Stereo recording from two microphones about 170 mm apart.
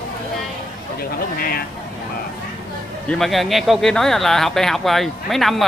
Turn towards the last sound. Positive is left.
turn(degrees=0)  # may be behind; listen again after turning